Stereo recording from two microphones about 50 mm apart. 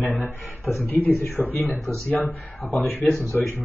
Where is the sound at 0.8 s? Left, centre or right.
Left.